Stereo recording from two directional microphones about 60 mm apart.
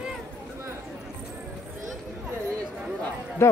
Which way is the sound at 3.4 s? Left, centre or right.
Left.